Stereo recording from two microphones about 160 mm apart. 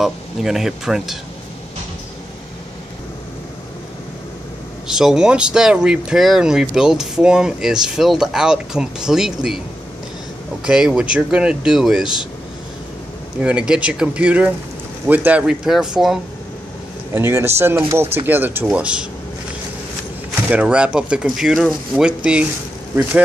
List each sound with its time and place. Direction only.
0.0 s speech: centre (ahead or behind)
4.8 s speech: 5° right (ahead or behind)
10.6 s speech: 5° right (ahead or behind)
13.4 s speech: 5° right (ahead or behind)
17.1 s speech: 15° right (ahead or behind)
20.4 s speech: 5° right (ahead or behind)